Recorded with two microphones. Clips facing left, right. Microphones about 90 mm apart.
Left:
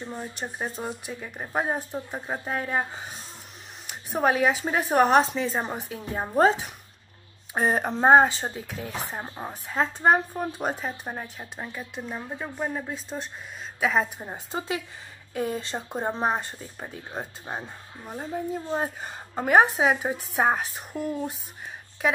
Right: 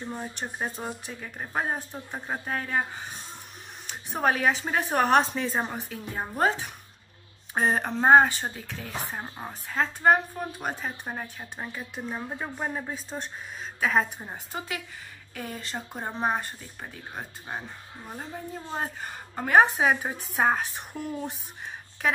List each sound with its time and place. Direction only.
0.4 s speech: centre (ahead or behind); by 2.8 s 15° left (ahead or behind)
3.8 s speech: 5° left (ahead or behind)
5.7 s speech: 15° left (ahead or behind)
7.5 s speech: 10° left (ahead or behind); by 10.8 s 25° left (ahead or behind)
10.8 s speech: 5° left (ahead or behind)
13.7 s speech: 5° left (ahead or behind)
14.3 s speech: 25° left (ahead or behind); by 21.4 s centre (ahead or behind)